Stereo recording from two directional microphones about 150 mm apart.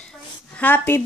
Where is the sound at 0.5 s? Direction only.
10° left (ahead or behind).